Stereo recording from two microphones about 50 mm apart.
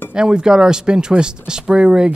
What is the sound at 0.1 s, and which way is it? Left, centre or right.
Speech, centre.